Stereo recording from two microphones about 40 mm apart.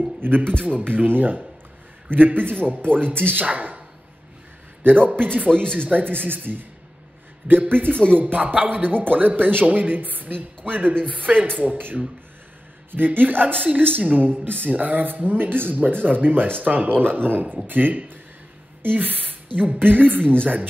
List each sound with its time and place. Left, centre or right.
0.2 s a man's voice: right
3.3 s speech: right
4.8 s speech: right
5.5 s speech: left
5.8 s a woman's voice: right